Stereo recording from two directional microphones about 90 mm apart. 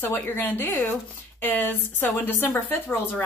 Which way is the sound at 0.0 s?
20° left (ahead or behind).